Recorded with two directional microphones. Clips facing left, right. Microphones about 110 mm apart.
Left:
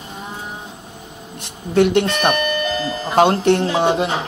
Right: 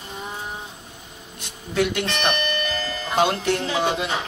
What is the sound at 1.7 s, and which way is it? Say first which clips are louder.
Speech: left 8 dB; 60° left (ahead or behind).